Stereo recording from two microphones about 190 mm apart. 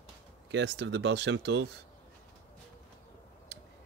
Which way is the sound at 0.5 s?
70° right (ahead or behind).